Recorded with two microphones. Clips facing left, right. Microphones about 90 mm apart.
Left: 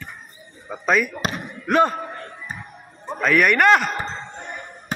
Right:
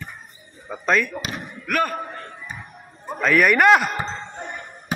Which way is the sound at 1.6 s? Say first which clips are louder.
Left 5 dB; 25° left (ahead or behind).